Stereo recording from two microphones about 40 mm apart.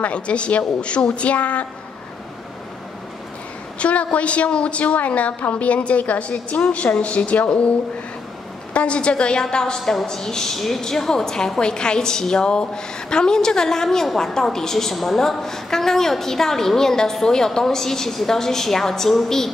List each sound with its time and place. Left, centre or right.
0.0 s a woman's voice: left
3.8 s a woman's voice: left
8.7 s a woman's voice: left; by 19.5 s centre